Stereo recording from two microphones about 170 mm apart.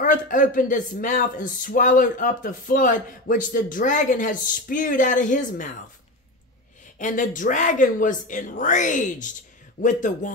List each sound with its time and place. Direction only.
0.0 s speech: 50° left (ahead or behind)
7.0 s speech: 50° left (ahead or behind)